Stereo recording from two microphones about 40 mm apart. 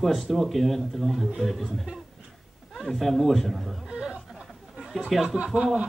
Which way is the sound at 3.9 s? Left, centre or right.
Right.